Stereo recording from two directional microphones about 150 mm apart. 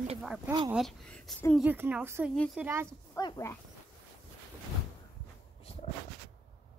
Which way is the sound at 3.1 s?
30° left (ahead or behind).